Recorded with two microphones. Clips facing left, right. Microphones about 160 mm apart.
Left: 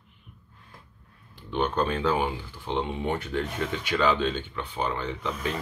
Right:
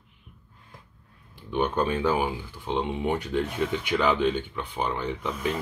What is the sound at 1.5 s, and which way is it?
Speech, 10° right (ahead or behind).